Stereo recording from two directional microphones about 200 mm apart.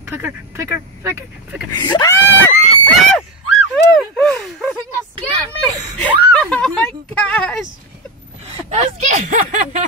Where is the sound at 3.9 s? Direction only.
Centre (ahead or behind).